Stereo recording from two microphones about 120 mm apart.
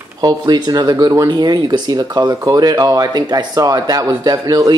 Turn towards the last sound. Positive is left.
turn(degrees=-30)  # may be behind; listen again after turning